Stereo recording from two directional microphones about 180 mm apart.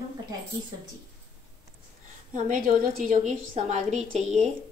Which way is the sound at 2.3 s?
45° right (ahead or behind).